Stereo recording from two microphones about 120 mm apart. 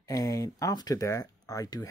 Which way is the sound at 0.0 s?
30° left (ahead or behind).